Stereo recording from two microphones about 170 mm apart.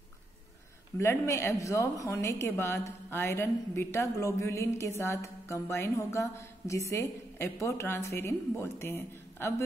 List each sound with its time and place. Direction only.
0.9 s a woman's voice: 15° left (ahead or behind)